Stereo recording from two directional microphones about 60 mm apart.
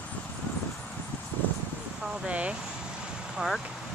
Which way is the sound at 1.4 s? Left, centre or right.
Left.